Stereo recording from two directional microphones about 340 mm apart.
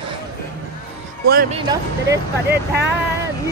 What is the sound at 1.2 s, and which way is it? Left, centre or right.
Speech, right.